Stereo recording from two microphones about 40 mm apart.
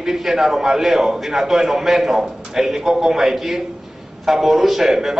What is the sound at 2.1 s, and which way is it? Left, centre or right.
A man's voice, centre.